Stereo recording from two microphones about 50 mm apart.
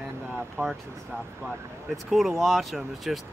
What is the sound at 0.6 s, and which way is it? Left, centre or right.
Speech, right.